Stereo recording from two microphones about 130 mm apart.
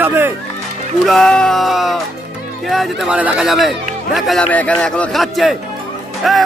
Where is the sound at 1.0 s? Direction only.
Centre (ahead or behind).